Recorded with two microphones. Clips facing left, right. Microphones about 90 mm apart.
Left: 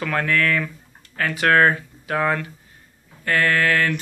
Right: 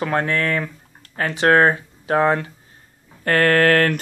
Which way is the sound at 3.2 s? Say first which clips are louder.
Right 4 dB; 45° right (ahead or behind).